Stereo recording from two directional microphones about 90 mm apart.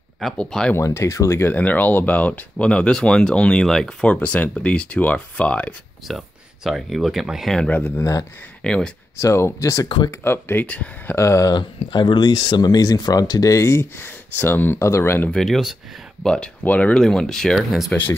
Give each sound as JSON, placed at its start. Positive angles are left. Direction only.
{"t": 0.2, "sound": "speech", "side_deg": 5}
{"t": 0.7, "sound": "speech", "side_deg": 30}
{"t": 1.5, "sound": "speech", "side_deg": 20}
{"t": 6.0, "sound": "speech", "side_deg": -5}
{"t": 7.6, "sound": "speech", "side_deg": 20}
{"t": 8.0, "sound": "speech", "side_deg": 40}
{"t": 8.6, "sound": "speech", "side_deg": 10}
{"t": 9.2, "sound": "speech", "side_deg": 30}
{"t": 10.2, "sound": "speech", "side_deg": 25}
{"t": 11.1, "sound": "speech", "side_deg": 35}
{"t": 11.5, "sound": "speech", "side_deg": 55}
{"t": 15.2, "sound": "speech", "side_deg": 5}
{"t": 16.9, "sound": "speech", "side_deg": 5}